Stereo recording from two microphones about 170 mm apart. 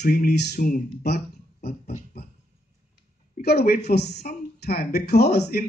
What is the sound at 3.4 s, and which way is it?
Speech, 65° left (ahead or behind).